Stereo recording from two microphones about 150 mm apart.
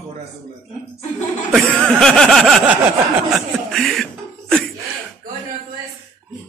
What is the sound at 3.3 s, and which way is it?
Chuckle, centre (ahead or behind).